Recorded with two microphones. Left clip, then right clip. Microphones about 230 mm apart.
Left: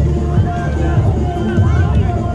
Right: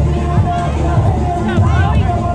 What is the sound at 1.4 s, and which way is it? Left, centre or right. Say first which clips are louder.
Music: right 3 dB; centre.